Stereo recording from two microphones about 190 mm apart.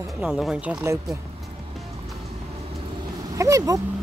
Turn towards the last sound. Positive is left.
turn(degrees=-15)  # may be behind; listen again after turning